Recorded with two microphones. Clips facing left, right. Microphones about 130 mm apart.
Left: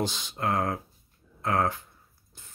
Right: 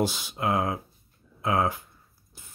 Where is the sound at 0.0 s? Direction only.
10° right (ahead or behind).